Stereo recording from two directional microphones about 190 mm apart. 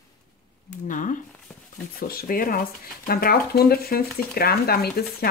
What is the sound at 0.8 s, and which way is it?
Speech, 45° left (ahead or behind).